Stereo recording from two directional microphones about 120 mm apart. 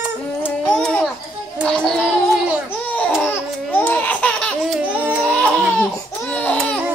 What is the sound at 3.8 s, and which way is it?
Laughter, 15° left (ahead or behind).